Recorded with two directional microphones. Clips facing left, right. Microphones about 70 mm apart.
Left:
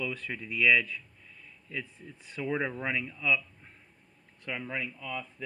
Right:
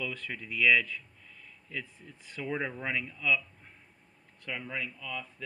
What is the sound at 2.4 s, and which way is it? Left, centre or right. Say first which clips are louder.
Speech: left 2 dB; centre.